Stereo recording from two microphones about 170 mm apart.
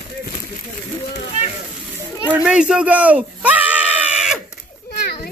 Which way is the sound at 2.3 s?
5° right (ahead or behind).